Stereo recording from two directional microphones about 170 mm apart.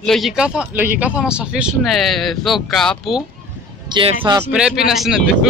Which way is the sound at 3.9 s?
30° right (ahead or behind).